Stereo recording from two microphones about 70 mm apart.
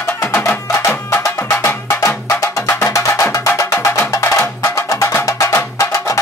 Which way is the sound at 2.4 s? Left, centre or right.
Left.